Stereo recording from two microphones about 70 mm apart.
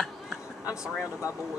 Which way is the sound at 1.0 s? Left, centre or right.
Left.